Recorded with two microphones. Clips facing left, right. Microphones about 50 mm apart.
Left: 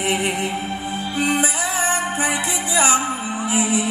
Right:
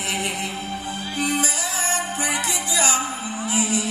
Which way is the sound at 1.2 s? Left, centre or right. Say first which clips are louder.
Left 4 dB; left.